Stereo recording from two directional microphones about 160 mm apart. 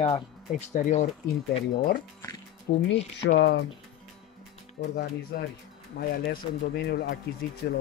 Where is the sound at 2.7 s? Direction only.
55° left (ahead or behind).